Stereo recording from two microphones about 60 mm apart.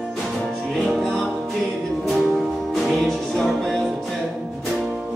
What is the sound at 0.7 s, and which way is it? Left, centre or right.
Music, centre.